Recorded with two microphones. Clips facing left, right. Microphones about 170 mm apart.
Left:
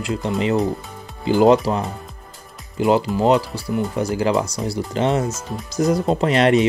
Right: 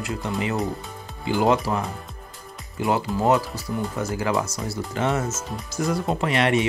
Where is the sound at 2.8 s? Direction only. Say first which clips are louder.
Left 5 dB; 20° left (ahead or behind).